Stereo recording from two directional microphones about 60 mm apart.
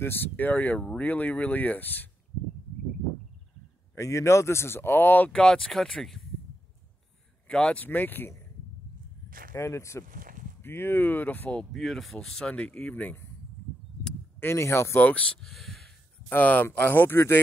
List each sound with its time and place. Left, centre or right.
0.0 s speech: left
3.9 s speech: left
5.3 s speech: centre
7.4 s speech: centre
7.8 s speech: left
9.6 s speech: left
10.6 s speech: left
11.7 s speech: centre
12.4 s speech: left
14.4 s speech: left
15.0 s speech: left
15.4 s speech: centre
16.3 s speech: left